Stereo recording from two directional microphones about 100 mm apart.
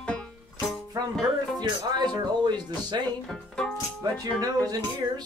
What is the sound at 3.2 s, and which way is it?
Speech, 5° left (ahead or behind).